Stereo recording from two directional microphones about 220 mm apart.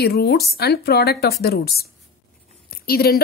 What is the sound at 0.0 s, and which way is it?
Speech, 45° left (ahead or behind).